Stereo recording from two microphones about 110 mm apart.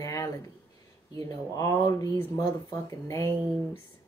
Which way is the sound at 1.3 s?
30° left (ahead or behind).